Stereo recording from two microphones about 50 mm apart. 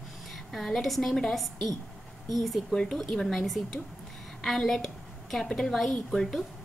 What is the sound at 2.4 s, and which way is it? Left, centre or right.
A woman's voice, centre.